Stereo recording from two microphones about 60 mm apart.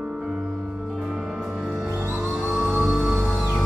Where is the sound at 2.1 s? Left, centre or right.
Right.